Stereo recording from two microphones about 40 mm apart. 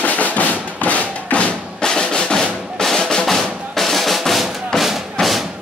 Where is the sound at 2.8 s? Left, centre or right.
Centre.